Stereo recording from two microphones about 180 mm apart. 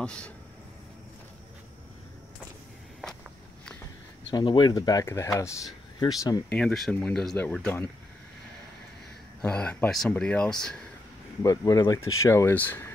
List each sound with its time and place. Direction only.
0.0 s speech: 5° left (ahead or behind)
4.3 s speech: 25° left (ahead or behind)
6.5 s speech: 5° left (ahead or behind)
9.4 s speech: 5° left (ahead or behind)
11.4 s speech: 20° left (ahead or behind)